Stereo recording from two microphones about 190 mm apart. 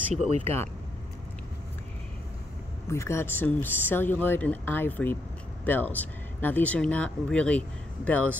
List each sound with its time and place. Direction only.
0.3 s speech: 35° right (ahead or behind)
2.9 s speech: 15° left (ahead or behind)